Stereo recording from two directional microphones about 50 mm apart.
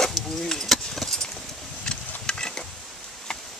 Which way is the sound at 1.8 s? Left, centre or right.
Centre.